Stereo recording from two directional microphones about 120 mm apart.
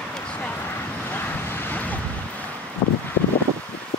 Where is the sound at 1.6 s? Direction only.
15° left (ahead or behind).